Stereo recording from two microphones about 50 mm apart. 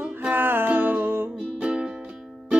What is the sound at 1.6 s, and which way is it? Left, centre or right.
Music, right.